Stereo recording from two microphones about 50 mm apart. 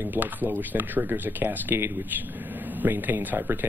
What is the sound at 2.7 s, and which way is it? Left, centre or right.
Speech, right.